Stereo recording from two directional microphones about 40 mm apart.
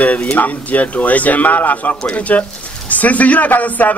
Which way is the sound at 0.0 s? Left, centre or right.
Left.